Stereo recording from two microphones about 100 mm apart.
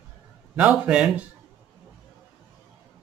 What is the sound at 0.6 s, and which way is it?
Speech, 10° right (ahead or behind).